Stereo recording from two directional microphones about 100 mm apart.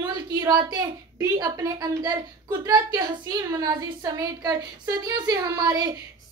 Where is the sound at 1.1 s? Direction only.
35° right (ahead or behind).